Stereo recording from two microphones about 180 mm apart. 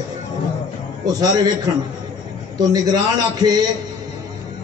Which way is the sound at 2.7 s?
20° right (ahead or behind).